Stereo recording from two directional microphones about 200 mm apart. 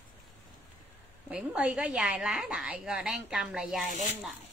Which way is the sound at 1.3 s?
5° right (ahead or behind).